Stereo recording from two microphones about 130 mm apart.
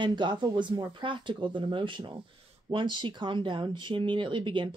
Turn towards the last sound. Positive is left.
turn(degrees=-35)  # may be behind; listen again after turning